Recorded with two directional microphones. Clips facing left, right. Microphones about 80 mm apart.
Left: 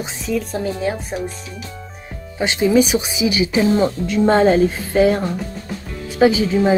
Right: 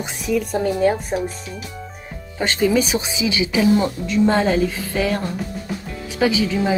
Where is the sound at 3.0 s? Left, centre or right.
Left.